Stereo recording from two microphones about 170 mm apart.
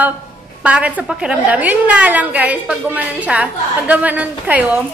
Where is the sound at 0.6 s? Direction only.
5° right (ahead or behind).